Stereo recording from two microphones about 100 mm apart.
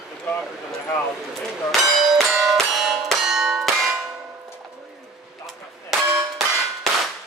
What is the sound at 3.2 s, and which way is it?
Church bell, 5° right (ahead or behind).